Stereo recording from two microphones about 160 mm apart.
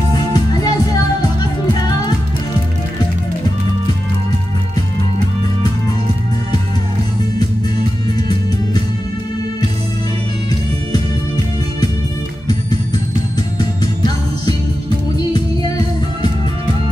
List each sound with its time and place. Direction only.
0.1 s music: 25° left (ahead or behind)